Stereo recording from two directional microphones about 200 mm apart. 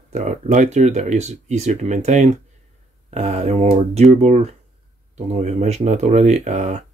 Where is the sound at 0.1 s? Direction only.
35° right (ahead or behind).